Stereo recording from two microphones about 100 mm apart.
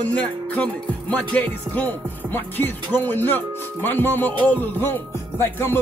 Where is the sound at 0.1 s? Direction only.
10° left (ahead or behind).